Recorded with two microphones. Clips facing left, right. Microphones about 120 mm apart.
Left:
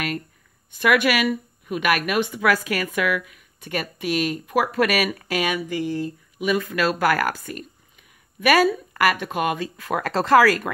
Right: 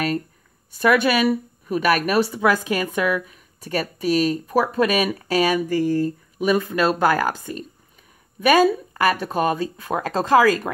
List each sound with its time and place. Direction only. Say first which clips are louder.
0.7 s a woman's voice: right 2 dB; 30° right (ahead or behind)
8.9 s speech: right 1 dB; 30° right (ahead or behind)